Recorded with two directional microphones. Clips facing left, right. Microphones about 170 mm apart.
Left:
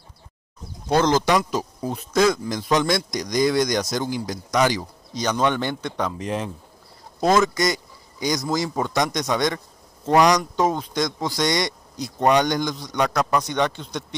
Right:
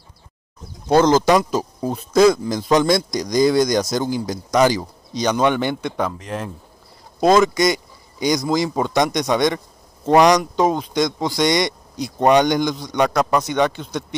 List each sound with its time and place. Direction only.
0.8 s speech: 45° right (ahead or behind)
5.1 s speech: 15° right (ahead or behind)
6.1 s a man's voice: 5° left (ahead or behind)
7.2 s speech: 15° right (ahead or behind)